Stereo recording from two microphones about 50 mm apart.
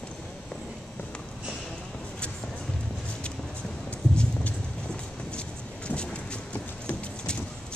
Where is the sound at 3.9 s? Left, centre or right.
Left.